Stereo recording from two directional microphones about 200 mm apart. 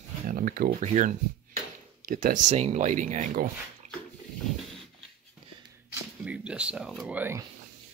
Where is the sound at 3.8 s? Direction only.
35° right (ahead or behind).